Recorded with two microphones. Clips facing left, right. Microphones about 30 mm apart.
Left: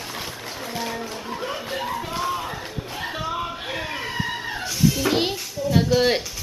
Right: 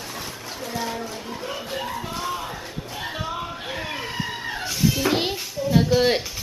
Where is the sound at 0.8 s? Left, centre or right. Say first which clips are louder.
Even; centre.